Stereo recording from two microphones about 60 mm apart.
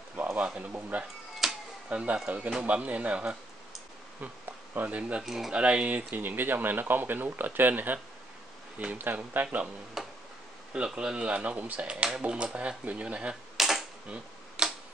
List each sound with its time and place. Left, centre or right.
0.1 s a sound: right
0.7 s speech: right
1.4 s music: centre
1.9 s speech: right
4.7 s speech: right
5.2 s speech: centre
5.5 s speech: centre
10.0 s tick-tock: centre
11.0 s speech: centre
13.6 s camera: centre
14.0 s a sound: centre